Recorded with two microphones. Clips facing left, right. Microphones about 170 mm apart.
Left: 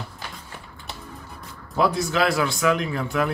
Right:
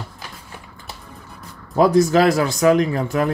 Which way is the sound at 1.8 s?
40° right (ahead or behind).